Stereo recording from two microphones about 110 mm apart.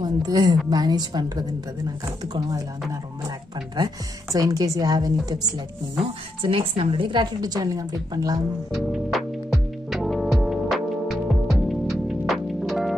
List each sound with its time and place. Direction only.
0.0 s a woman's voice: 35° right (ahead or behind)
3.7 s a woman's voice: 35° right (ahead or behind)
6.4 s a woman's voice: 55° right (ahead or behind); by 8.5 s 35° right (ahead or behind)
8.7 s music: centre (ahead or behind)